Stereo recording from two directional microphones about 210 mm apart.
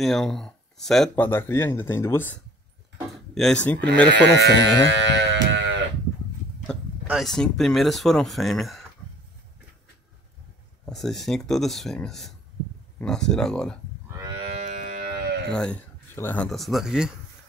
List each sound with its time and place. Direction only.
0.0 s speech: centre (ahead or behind)
3.3 s speech: 5° left (ahead or behind)
4.1 s speech: 55° right (ahead or behind)
4.8 s a sound: 60° right (ahead or behind)
6.7 s speech: centre (ahead or behind)
10.9 s speech: centre (ahead or behind)
14.2 s livestock: 30° right (ahead or behind)
15.5 s speech: 5° left (ahead or behind)